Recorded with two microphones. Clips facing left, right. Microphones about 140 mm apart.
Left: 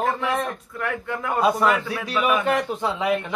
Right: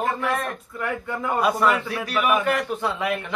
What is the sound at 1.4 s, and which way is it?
Speech, 20° left (ahead or behind).